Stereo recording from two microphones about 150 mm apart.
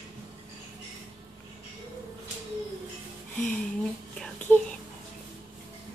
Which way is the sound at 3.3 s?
10° left (ahead or behind).